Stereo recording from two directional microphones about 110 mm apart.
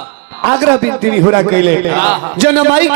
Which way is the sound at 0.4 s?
30° right (ahead or behind).